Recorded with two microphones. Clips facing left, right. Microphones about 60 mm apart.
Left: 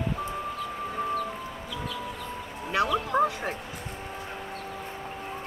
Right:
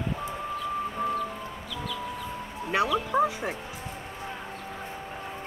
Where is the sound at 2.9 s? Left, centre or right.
Centre.